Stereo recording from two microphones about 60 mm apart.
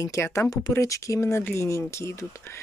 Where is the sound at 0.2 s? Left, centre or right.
Left.